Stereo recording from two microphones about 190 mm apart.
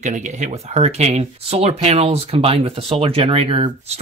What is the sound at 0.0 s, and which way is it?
Speech, 40° right (ahead or behind).